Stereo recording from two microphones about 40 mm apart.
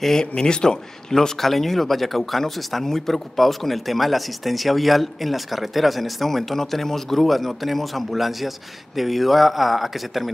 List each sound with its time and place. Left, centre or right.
0.0 s a man's voice: centre
1.4 s speech: centre